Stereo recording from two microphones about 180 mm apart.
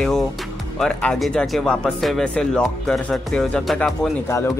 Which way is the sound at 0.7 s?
5° left (ahead or behind).